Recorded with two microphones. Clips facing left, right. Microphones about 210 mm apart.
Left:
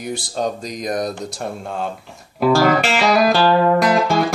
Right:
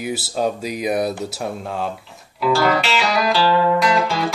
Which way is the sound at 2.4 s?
50° left (ahead or behind).